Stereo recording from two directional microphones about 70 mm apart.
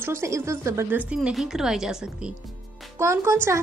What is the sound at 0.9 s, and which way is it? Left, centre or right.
A woman's voice, centre.